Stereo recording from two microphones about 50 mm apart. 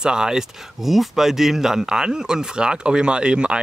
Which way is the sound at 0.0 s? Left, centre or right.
Centre.